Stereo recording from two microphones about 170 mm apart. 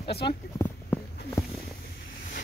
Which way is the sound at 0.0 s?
35° left (ahead or behind).